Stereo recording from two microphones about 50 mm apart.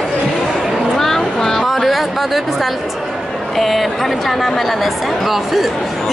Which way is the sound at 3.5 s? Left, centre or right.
Centre.